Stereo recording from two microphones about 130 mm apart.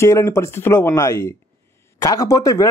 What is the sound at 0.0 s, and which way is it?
Speech, 20° left (ahead or behind).